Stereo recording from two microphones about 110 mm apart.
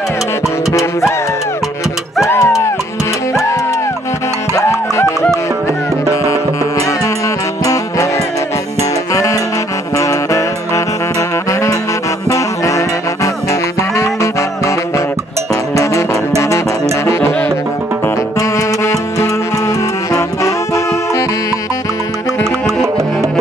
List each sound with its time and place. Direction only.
0.7 s music: 30° left (ahead or behind)
2.2 s music: 30° left (ahead or behind)
4.6 s music: 25° left (ahead or behind)
7.6 s music: 30° left (ahead or behind)
9.1 s music: 30° left (ahead or behind)
15.7 s music: 30° left (ahead or behind)